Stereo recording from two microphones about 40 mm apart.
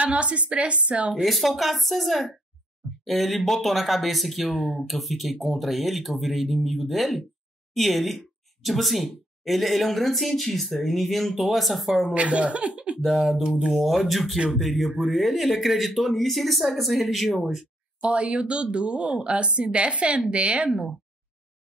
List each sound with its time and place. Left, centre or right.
0.0 s a woman's voice: right
1.2 s speech: centre
12.1 s a woman's voice: right
13.2 s speech: centre
18.0 s speech: right